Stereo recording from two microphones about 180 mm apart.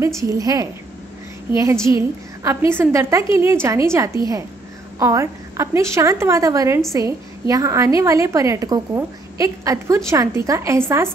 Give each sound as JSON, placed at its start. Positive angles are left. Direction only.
{"t": 0.2, "sound": "a woman's voice", "side_deg": -20}